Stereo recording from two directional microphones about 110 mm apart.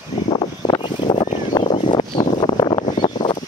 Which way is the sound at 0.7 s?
40° left (ahead or behind).